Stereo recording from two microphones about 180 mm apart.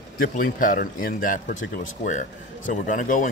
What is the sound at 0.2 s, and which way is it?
A man's voice, 50° left (ahead or behind).